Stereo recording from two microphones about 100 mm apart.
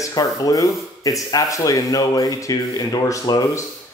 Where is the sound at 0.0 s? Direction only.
40° left (ahead or behind).